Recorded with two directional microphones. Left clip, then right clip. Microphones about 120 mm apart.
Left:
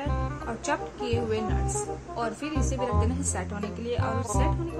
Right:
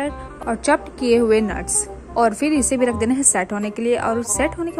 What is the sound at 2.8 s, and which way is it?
A woman's voice, 50° right (ahead or behind).